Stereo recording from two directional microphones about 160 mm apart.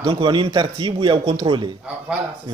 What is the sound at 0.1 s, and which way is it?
Speech, 30° right (ahead or behind).